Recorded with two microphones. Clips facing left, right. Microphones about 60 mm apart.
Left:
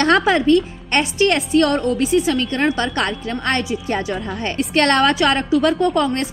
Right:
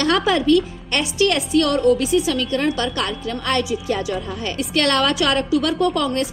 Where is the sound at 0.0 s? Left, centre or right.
Left.